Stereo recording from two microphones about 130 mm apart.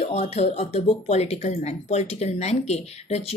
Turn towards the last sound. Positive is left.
turn(degrees=55)  # may be behind; listen again after turning